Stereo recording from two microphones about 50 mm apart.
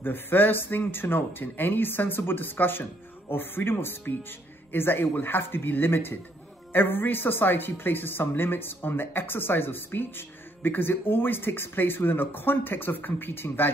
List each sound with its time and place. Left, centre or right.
0.0 s speech: left